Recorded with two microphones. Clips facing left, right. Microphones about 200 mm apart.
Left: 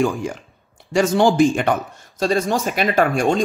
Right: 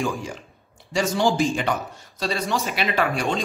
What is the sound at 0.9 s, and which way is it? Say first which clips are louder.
Speech: left 6 dB; 55° left (ahead or behind).